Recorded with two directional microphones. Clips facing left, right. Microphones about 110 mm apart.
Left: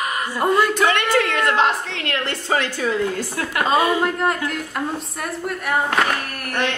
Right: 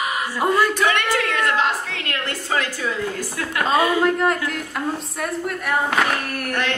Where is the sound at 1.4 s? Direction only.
25° left (ahead or behind).